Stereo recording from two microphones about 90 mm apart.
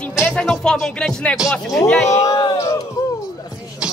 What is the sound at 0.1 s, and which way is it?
Music, 5° right (ahead or behind).